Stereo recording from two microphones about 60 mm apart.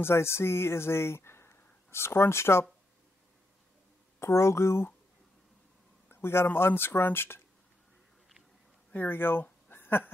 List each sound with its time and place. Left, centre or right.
0.0 s speech: left
4.2 s speech: left
6.0 s speech: left
8.9 s speech: left